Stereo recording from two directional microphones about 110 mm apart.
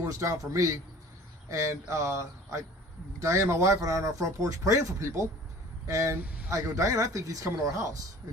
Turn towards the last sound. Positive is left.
turn(degrees=-30)  # may be behind; listen again after turning